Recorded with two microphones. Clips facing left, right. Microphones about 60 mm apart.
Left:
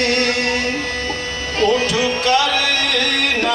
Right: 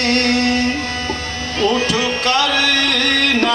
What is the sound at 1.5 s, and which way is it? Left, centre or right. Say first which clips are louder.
Music: left 1 dB; left.